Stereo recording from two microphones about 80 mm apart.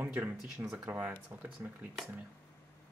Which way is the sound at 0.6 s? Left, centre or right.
Right.